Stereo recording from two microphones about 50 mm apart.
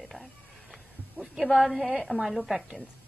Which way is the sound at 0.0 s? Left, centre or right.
Centre.